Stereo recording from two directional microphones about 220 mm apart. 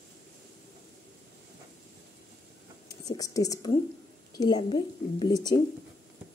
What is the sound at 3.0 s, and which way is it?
A woman's voice, 15° left (ahead or behind).